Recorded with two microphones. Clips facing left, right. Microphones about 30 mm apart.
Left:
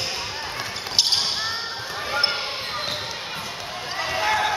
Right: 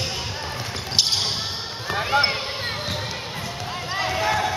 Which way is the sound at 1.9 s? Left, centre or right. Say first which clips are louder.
Right 8 dB; right.